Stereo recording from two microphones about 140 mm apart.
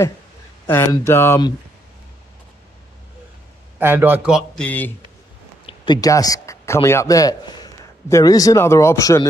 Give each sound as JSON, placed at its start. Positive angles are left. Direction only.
{"t": 0.7, "sound": "speech", "side_deg": 15}
{"t": 3.8, "sound": "a man's voice", "side_deg": -15}
{"t": 4.6, "sound": "speech", "side_deg": 10}
{"t": 5.7, "sound": "speech", "side_deg": 30}